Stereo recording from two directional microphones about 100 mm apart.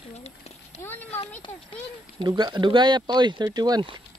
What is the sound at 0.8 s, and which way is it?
Speech, 20° left (ahead or behind).